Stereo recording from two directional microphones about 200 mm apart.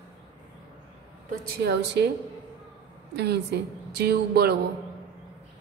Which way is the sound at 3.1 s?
55° right (ahead or behind).